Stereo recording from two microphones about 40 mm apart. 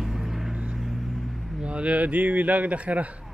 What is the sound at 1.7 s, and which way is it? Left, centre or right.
Speech, right.